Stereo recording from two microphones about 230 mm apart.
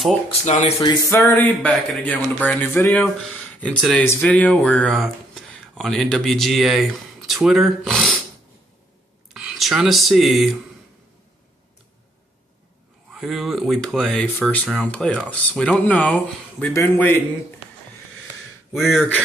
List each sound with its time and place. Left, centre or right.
0.3 s speech: left
0.7 s speech: centre
9.3 s speech: centre
13.1 s speech: centre
18.8 s speech: centre